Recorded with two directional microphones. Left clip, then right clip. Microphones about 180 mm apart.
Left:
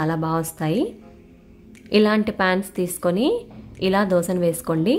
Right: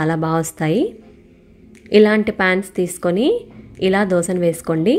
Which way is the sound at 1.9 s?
15° right (ahead or behind).